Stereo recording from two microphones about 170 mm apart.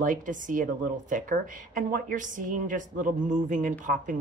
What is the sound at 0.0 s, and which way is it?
Speech, 50° right (ahead or behind).